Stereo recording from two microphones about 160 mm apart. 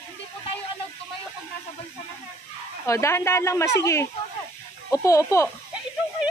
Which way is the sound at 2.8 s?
15° left (ahead or behind).